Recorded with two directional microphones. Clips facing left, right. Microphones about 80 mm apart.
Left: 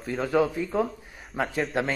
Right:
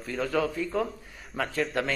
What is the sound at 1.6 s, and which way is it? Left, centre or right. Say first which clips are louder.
Speech: left 2 dB; centre.